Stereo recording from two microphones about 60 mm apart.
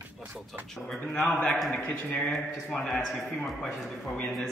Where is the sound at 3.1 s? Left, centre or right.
Left.